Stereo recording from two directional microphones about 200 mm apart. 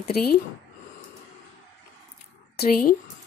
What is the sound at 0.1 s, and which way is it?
Speech, 50° left (ahead or behind).